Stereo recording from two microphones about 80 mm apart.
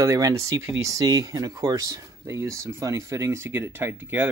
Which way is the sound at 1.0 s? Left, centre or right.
Right.